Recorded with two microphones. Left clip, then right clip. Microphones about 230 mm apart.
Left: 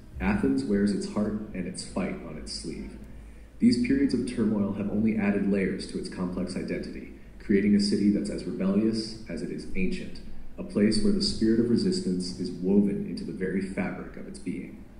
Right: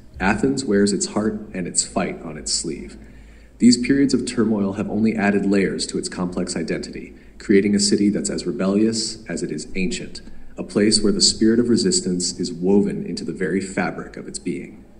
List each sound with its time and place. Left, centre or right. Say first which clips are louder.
0.2 s a man's voice: right 8 dB; right
3.5 s a man's voice: right 8 dB; right